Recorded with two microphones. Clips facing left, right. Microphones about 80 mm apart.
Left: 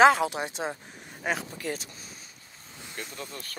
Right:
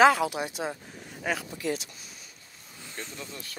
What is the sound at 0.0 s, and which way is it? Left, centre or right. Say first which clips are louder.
Speech: left 1 dB; left.